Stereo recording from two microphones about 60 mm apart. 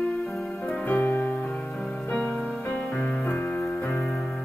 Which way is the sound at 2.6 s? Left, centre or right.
Left.